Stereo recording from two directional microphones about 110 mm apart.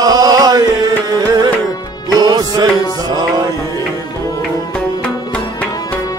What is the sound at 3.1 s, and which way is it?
Mantra, 35° right (ahead or behind).